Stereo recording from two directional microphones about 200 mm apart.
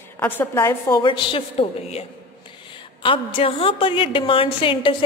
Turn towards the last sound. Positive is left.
turn(degrees=25)  # may be behind; listen again after turning